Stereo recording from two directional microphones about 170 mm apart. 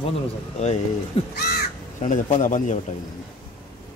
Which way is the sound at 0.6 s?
40° left (ahead or behind).